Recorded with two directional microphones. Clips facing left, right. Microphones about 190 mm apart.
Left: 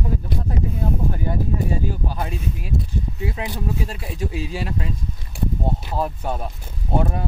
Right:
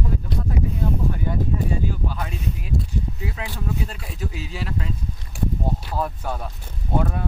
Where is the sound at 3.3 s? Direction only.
20° left (ahead or behind).